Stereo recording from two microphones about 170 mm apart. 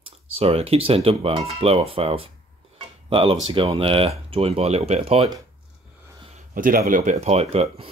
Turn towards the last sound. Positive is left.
turn(degrees=-40)  # may be behind; listen again after turning